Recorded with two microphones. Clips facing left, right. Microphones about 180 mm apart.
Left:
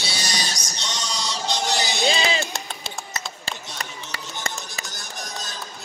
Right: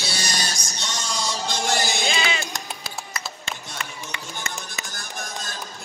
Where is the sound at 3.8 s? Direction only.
35° left (ahead or behind).